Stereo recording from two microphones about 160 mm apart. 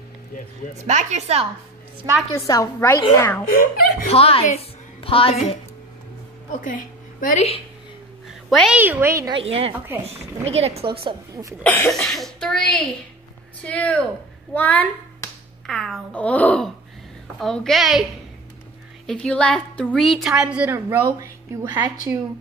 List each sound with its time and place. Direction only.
0.8 s a woman's voice: 45° right (ahead or behind)
2.3 s a woman's voice: 20° left (ahead or behind)
3.5 s speech: 70° left (ahead or behind)
4.1 s a woman's voice: 40° left (ahead or behind)
6.5 s a woman's voice: 55° left (ahead or behind)
8.3 s a sound: centre (ahead or behind)
8.7 s a woman's voice: 10° right (ahead or behind)
9.3 s a woman's voice: 35° right (ahead or behind)
11.6 s a child's voice: 10° left (ahead or behind)
19.0 s a woman's voice: 5° left (ahead or behind); by 22.2 s 15° right (ahead or behind)